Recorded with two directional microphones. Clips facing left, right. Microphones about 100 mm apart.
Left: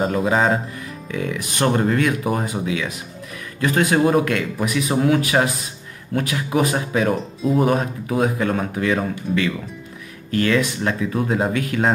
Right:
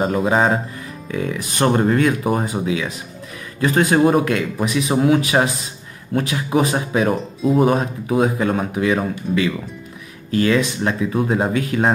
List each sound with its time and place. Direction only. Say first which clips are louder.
0.0 s speech: right 1 dB; 30° right (ahead or behind)